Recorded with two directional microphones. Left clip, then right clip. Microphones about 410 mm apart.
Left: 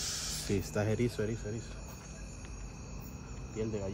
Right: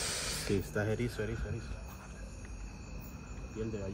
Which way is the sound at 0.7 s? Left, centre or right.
Left.